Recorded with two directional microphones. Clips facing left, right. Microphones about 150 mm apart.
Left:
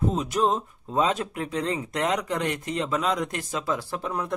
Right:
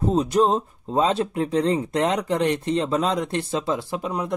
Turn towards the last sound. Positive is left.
turn(degrees=-20)  # may be behind; listen again after turning